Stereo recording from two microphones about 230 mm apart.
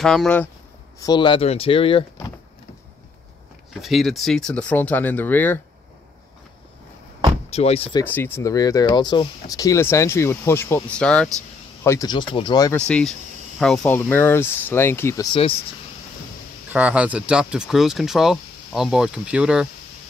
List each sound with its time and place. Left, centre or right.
0.0 s speech: centre
0.9 s speech: centre
3.7 s speech: centre
7.4 s speech: left
8.0 s speech: centre
12.7 s speech: centre
16.7 s speech: centre